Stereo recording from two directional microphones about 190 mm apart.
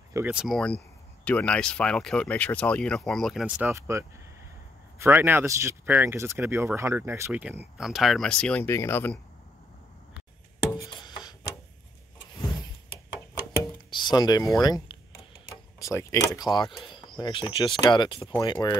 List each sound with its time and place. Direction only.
0.1 s speech: 10° right (ahead or behind); by 9.2 s 10° left (ahead or behind)
10.8 s music: 25° left (ahead or behind)
13.8 s speech: 25° left (ahead or behind)